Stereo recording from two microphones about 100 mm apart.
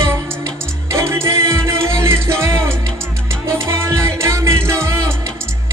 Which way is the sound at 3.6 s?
30° right (ahead or behind).